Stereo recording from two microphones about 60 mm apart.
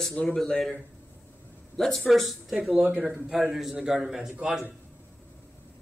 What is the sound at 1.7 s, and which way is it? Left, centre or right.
A man's voice, centre.